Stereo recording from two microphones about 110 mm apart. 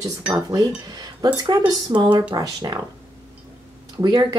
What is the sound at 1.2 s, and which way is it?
Speech, 40° right (ahead or behind).